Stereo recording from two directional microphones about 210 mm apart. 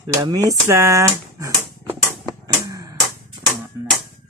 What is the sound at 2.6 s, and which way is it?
Music, 15° right (ahead or behind).